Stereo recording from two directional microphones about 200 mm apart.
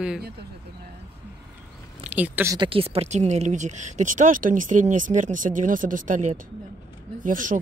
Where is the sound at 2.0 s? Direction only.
10° right (ahead or behind).